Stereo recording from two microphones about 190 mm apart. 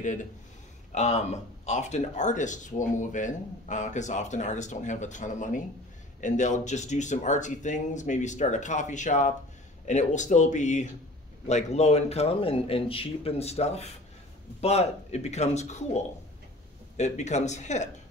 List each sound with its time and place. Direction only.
0.0 s speech: 40° left (ahead or behind)